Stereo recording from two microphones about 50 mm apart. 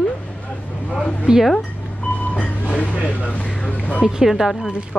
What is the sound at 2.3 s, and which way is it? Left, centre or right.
Vehicle, left.